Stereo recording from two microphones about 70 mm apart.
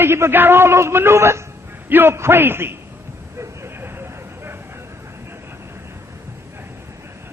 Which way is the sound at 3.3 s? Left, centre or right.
Right.